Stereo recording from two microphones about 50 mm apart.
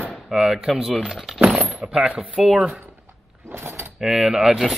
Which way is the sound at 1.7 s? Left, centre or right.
Centre.